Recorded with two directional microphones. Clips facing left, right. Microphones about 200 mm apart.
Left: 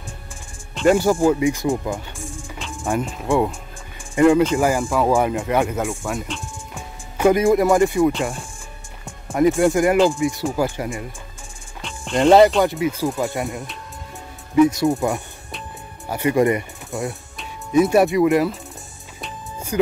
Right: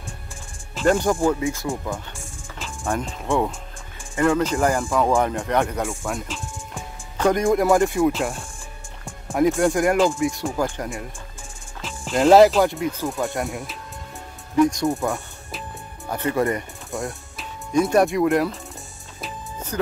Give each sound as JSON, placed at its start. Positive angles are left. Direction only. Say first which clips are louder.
{"t": 0.8, "sound": "speech", "louder": "left 3 dB", "side_deg": 10}
{"t": 4.1, "sound": "speech", "louder": "left 6 dB", "side_deg": 15}
{"t": 4.5, "sound": "speech", "louder": "left 2 dB", "side_deg": 5}
{"t": 15.0, "sound": "speech", "louder": "left 3 dB", "side_deg": 15}
{"t": 16.9, "sound": "speech", "louder": "left 2 dB", "side_deg": 0}
{"t": 19.7, "sound": "speech", "louder": "left 6 dB", "side_deg": 10}